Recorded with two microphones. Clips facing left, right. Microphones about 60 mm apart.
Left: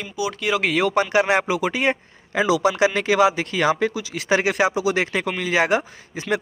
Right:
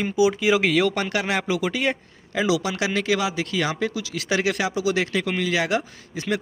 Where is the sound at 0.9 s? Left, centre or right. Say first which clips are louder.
Left 6 dB; left.